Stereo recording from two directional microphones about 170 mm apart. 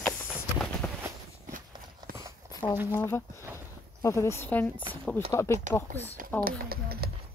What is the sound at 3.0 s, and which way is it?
Speech, 15° left (ahead or behind).